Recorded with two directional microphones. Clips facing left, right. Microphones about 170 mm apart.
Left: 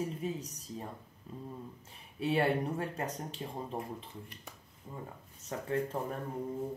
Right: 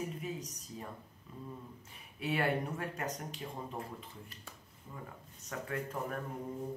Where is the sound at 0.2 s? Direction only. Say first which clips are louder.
Left 4 dB; 30° left (ahead or behind).